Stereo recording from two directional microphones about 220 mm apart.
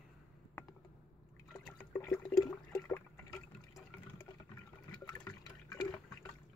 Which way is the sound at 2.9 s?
15° left (ahead or behind).